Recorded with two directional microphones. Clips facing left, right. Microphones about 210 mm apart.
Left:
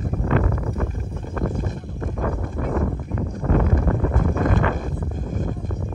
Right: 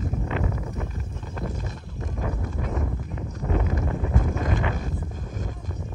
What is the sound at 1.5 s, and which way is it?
Boat, 50° left (ahead or behind).